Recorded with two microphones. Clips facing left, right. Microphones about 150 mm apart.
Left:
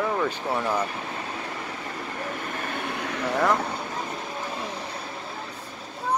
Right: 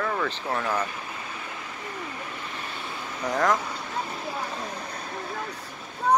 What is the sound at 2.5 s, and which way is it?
Vehicle, 55° left (ahead or behind).